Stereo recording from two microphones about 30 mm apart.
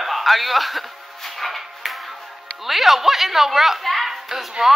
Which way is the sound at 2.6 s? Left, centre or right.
Centre.